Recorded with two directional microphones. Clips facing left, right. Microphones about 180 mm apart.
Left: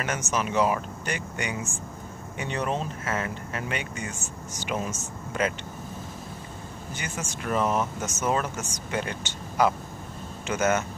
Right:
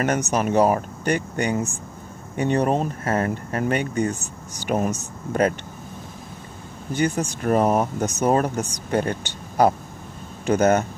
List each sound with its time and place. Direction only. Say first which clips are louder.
0.3 s speech: right 4 dB; 45° right (ahead or behind)
4.6 s speech: right 8 dB; 65° right (ahead or behind)
5.4 s speech: right 7 dB; 45° right (ahead or behind)
7.0 s speech: right 13 dB; 35° right (ahead or behind)